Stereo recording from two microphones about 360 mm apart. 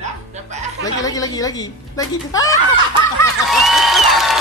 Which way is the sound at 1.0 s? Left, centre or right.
Centre.